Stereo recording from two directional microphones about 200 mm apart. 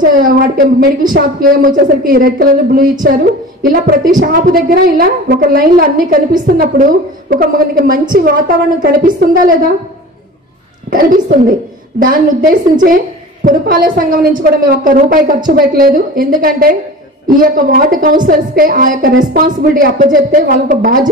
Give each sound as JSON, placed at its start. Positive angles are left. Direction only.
{"t": 0.2, "sound": "a woman's voice", "side_deg": -45}
{"t": 10.9, "sound": "a woman's voice", "side_deg": -45}